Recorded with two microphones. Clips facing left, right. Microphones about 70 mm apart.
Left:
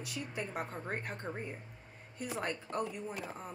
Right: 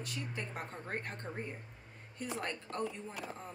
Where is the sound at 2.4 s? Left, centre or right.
Centre.